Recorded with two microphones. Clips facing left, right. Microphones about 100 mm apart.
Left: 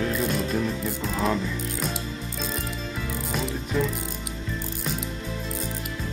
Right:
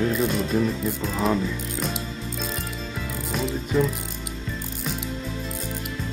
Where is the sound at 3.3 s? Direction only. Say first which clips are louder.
Right 4 dB; centre (ahead or behind).